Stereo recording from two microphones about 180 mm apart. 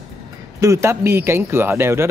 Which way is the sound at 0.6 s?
15° right (ahead or behind).